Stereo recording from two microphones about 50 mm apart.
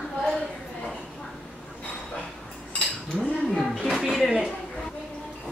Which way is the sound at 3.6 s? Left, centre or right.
Centre.